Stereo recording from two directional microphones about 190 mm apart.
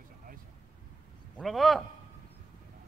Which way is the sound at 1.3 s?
Centre (ahead or behind).